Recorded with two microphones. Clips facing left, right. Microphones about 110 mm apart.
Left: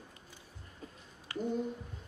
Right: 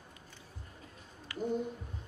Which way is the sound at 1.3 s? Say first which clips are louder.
Left 1 dB; 30° left (ahead or behind).